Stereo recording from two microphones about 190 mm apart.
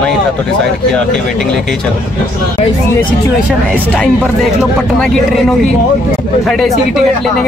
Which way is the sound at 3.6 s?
5° left (ahead or behind).